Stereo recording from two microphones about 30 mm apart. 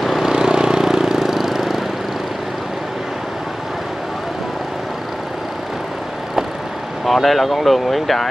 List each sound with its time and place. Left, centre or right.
0.2 s vehicle: centre
0.8 s vehicle: centre
7.1 s speech: centre